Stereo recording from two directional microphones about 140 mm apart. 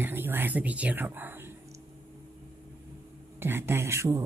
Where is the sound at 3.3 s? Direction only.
15° right (ahead or behind).